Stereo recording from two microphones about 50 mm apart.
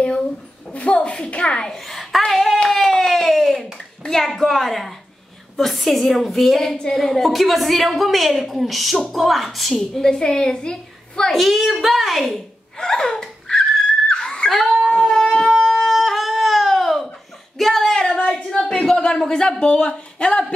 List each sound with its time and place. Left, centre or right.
0.7 s a child's voice: left
1.7 s hands: centre
3.7 s a woman's voice: centre
9.8 s a woman's voice: centre
11.3 s a woman's voice: centre
12.7 s laughter: centre
14.5 s a sound: centre
15.1 s shofar: centre
15.6 s wind instrument: centre
17.6 s a sound: centre
18.1 s a sound: left
18.6 s speech: centre